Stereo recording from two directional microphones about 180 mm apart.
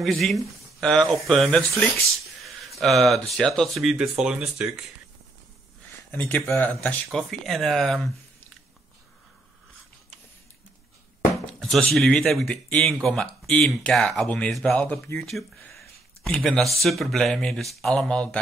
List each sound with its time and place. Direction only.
0.0 s speech: centre (ahead or behind)
6.1 s speech: 10° left (ahead or behind)
11.4 s speech: 5° left (ahead or behind)